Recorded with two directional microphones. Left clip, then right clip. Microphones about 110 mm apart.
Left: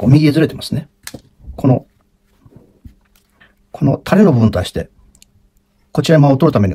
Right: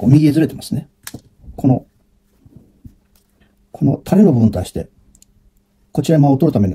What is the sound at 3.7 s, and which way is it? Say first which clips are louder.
Speech: left 2 dB; 45° left (ahead or behind).